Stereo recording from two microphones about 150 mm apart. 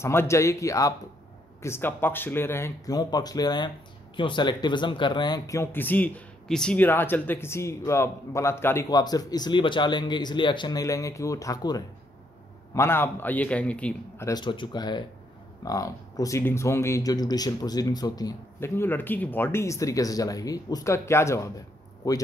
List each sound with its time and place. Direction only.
0.0 s speech: 15° left (ahead or behind)
14.2 s speech: 30° left (ahead or behind)